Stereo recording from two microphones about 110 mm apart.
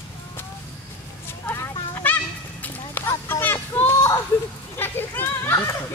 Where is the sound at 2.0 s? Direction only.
15° left (ahead or behind).